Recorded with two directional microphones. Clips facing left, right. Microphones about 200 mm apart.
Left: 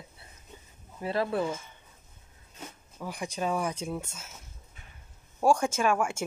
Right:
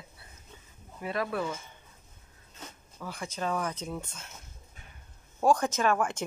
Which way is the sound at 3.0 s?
15° left (ahead or behind).